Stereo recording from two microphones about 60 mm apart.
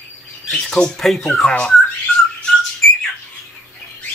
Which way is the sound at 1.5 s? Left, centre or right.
Centre.